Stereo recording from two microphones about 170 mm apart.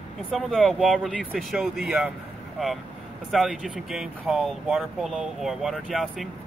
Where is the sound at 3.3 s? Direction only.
Centre (ahead or behind).